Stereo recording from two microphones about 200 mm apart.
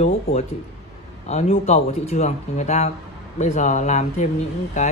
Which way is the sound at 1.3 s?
30° left (ahead or behind).